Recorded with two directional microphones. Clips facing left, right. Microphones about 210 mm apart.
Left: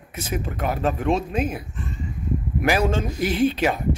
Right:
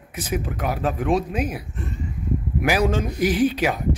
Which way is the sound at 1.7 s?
60° right (ahead or behind).